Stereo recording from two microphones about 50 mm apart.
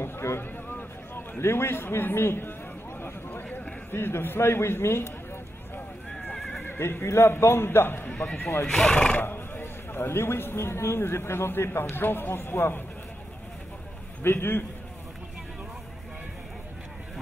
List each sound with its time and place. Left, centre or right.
0.0 s a sound: left
0.4 s a sound: left
1.4 s speech: left
3.0 s a sound: left
3.9 s a man's voice: left
6.8 s speech: left
8.6 s speech: centre
8.9 s speech: left
9.2 s speech: left
14.2 s speech: left